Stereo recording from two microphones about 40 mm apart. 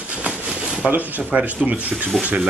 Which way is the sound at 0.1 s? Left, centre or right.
Right.